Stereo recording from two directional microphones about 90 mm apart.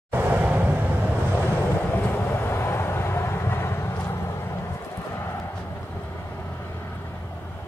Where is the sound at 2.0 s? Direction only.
30° left (ahead or behind).